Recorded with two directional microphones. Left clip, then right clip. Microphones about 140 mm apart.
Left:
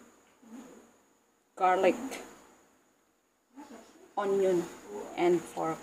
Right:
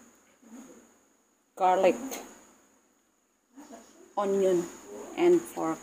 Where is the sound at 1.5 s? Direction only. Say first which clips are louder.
Right 2 dB; 15° right (ahead or behind).